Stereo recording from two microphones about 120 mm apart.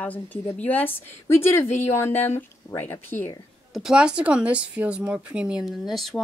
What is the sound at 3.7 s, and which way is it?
Speech, 5° right (ahead or behind).